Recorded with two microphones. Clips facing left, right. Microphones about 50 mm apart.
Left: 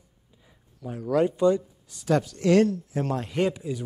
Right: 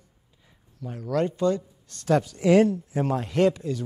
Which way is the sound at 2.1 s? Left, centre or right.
Centre.